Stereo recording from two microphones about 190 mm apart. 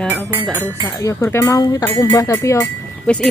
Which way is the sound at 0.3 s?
10° right (ahead or behind).